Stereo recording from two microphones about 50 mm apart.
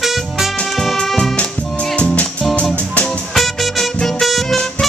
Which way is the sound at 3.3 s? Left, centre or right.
Centre.